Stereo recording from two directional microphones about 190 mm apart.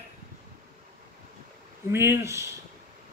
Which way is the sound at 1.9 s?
15° right (ahead or behind).